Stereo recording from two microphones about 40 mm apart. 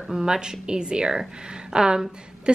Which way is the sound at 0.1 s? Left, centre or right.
Centre.